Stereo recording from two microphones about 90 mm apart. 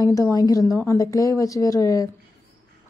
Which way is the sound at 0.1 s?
40° left (ahead or behind).